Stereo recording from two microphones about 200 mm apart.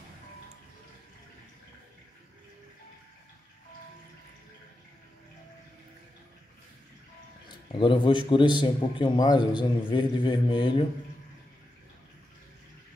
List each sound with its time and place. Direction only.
7.4 s a man's voice: 25° left (ahead or behind)